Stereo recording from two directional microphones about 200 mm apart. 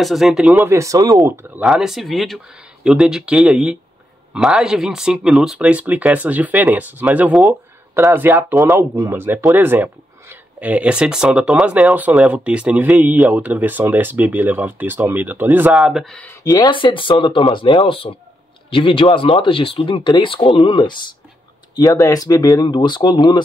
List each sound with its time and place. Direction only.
0.0 s speech: centre (ahead or behind)
1.6 s speech: centre (ahead or behind)
16.4 s speech: 20° left (ahead or behind)